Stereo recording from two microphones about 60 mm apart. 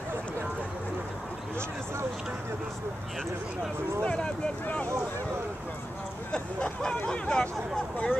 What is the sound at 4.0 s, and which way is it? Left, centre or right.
Speech, centre.